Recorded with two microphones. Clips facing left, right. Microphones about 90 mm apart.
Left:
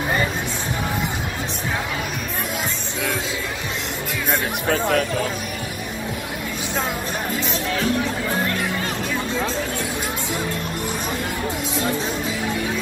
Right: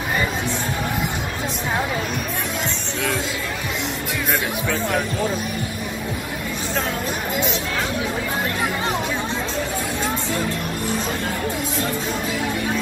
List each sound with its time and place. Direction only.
4.6 s speech: 60° left (ahead or behind)